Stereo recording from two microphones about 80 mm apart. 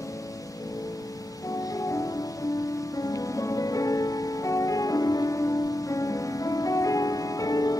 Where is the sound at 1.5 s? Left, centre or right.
Left.